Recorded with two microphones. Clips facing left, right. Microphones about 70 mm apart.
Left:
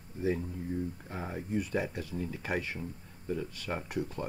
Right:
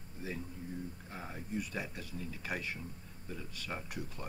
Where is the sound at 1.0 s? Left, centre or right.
Left.